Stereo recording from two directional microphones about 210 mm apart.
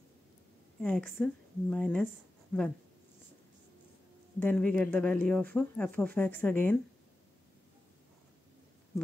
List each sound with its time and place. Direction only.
0.7 s a woman's voice: 5° left (ahead or behind)
4.4 s speech: 10° left (ahead or behind)